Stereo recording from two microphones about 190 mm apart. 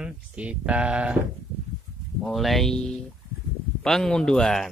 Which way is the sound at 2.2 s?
Centre (ahead or behind).